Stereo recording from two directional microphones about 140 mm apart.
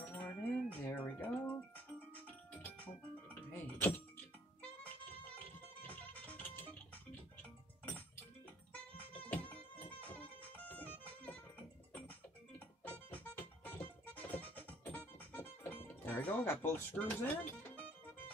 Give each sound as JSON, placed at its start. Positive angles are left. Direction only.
{"t": 0.0, "sound": "wind chime", "side_deg": 15}
{"t": 2.1, "sound": "music", "side_deg": 10}
{"t": 9.2, "sound": "a sound", "side_deg": 10}
{"t": 9.9, "sound": "music", "side_deg": 10}
{"t": 15.9, "sound": "speech", "side_deg": 10}